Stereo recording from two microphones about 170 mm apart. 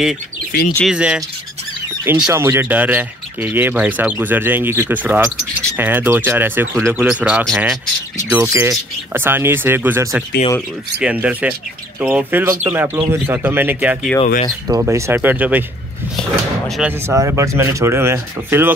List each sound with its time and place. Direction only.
0.5 s speech: 60° left (ahead or behind)
0.8 s speech: 5° right (ahead or behind)
16.2 s speech: centre (ahead or behind)
17.0 s speech: 15° right (ahead or behind)